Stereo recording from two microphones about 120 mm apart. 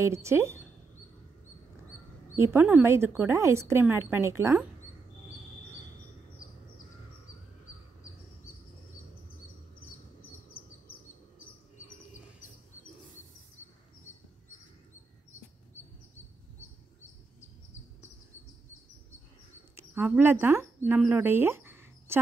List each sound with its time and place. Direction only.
0.0 s a woman's voice: 25° right (ahead or behind)
2.3 s a woman's voice: 20° right (ahead or behind)
19.9 s speech: 20° right (ahead or behind)
21.1 s a sound: 20° right (ahead or behind)